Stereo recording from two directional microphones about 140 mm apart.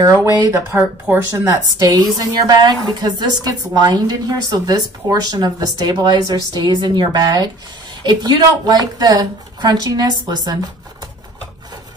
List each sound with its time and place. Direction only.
0.0 s speech: 20° right (ahead or behind)
2.3 s a woman's voice: 25° right (ahead or behind)